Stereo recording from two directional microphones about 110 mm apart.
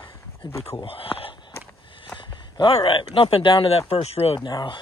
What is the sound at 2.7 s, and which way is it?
Speech, 55° left (ahead or behind).